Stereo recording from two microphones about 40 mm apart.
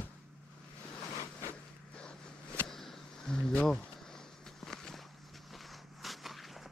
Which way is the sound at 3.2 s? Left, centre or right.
Left.